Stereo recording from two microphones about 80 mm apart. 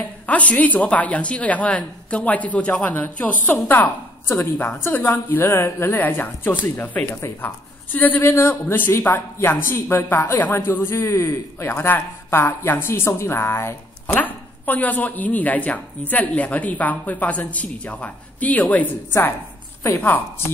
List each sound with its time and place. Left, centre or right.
0.3 s a woman's voice: centre
14.1 s speech: left
20.0 s speech: left